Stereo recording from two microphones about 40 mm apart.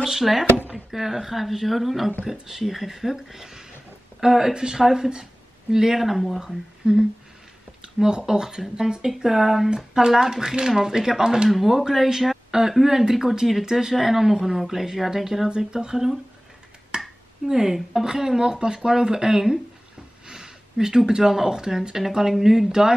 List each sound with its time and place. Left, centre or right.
0.0 s speech: centre
6.4 s speech: centre
16.9 s finger snapping: centre
17.5 s speech: centre